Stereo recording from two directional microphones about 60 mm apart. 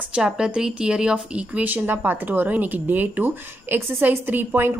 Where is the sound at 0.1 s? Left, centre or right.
Centre.